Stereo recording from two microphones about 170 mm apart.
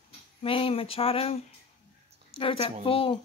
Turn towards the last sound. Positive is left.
turn(degrees=30)  # may be behind; listen again after turning